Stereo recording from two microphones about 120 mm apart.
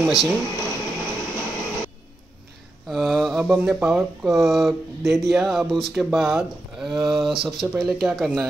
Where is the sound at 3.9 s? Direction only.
Centre (ahead or behind).